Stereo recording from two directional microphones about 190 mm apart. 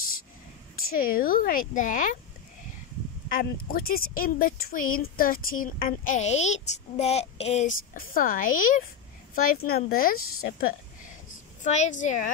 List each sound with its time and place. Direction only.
0.7 s a child's voice: 50° left (ahead or behind)
3.3 s a child's voice: 50° left (ahead or behind)
11.6 s a woman's voice: 40° left (ahead or behind)